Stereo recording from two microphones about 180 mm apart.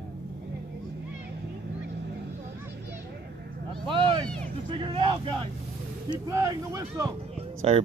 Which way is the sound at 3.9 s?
30° right (ahead or behind).